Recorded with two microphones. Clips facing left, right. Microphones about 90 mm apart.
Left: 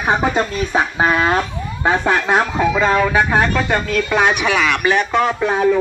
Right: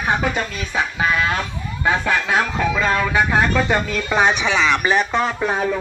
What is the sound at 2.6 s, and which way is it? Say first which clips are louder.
Speech: left 4 dB; 20° left (ahead or behind).